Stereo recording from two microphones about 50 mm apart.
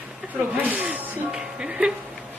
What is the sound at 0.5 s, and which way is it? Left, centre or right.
Speech, right.